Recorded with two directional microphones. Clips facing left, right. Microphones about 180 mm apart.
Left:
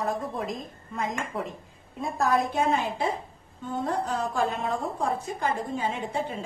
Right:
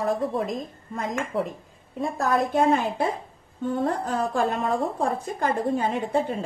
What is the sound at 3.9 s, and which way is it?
A woman's voice, 50° right (ahead or behind).